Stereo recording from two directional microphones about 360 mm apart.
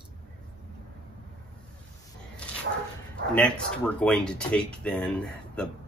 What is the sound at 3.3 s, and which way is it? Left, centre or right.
Speech, centre.